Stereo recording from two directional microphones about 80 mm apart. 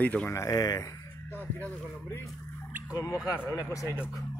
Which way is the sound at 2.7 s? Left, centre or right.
Right.